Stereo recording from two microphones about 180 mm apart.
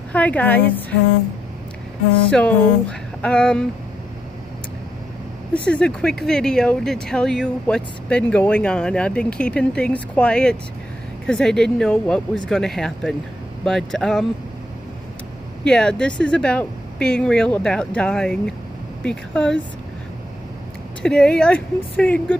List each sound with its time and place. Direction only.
0.1 s a woman's voice: 10° left (ahead or behind)
2.3 s speech: 5° left (ahead or behind)
5.7 s speech: 5° left (ahead or behind)
15.6 s speech: 5° left (ahead or behind)
21.0 s speech: 5° left (ahead or behind)